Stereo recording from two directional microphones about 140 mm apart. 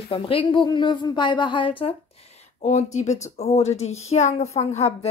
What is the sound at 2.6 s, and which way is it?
Speech, 55° left (ahead or behind).